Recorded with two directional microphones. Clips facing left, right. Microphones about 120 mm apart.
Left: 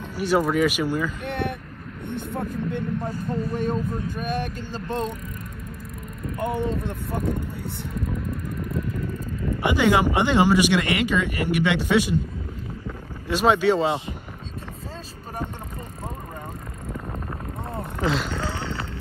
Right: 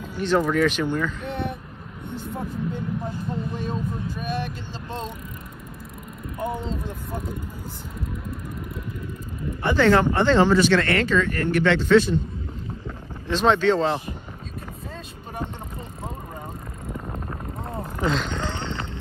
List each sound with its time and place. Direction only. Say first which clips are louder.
0.2 s speech: even; 10° left (ahead or behind)
1.2 s a sound: left 1 dB; 65° left (ahead or behind)
2.0 s vehicle: left 2 dB; 65° left (ahead or behind)
4.2 s speech: even; 50° left (ahead or behind)
6.5 s speech: left 4 dB; 60° left (ahead or behind)
9.6 s speech: right 2 dB; 10° left (ahead or behind)
13.3 s speech: even; 10° left (ahead or behind)
16.8 s boat: even; 5° right (ahead or behind)
17.6 s vehicle: even; centre (ahead or behind)